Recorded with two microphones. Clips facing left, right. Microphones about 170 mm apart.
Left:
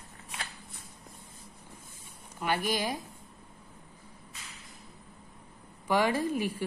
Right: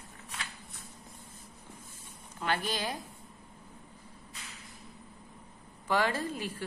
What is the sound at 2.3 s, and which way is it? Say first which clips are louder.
Speech: left 3 dB; 10° left (ahead or behind).